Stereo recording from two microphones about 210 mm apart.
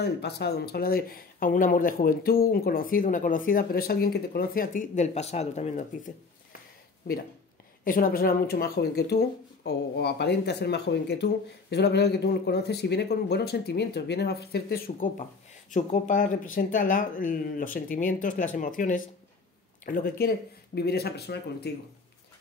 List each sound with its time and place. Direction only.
0.0 s speech: 50° left (ahead or behind); by 6.1 s 35° left (ahead or behind)
7.8 s speech: 45° left (ahead or behind)